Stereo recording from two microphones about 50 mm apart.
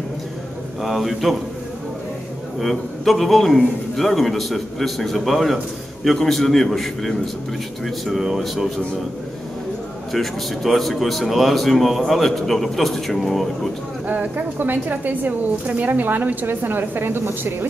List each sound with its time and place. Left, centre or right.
0.8 s a man's voice: centre
2.6 s a man's voice: centre
10.1 s a man's voice: centre
14.0 s a woman's voice: right